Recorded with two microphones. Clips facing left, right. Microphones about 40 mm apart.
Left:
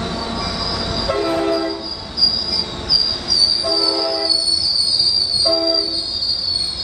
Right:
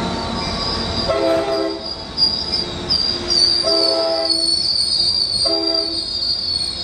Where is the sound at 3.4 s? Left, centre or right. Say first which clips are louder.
Right 1 dB; right.